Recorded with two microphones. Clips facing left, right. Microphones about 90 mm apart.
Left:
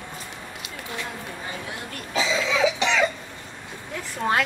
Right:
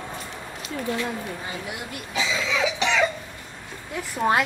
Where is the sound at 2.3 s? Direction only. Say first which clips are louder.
Left 2 dB; 15° left (ahead or behind).